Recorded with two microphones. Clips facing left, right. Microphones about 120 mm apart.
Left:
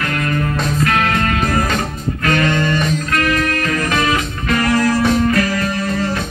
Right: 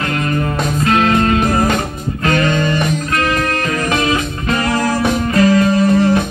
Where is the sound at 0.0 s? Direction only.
25° right (ahead or behind).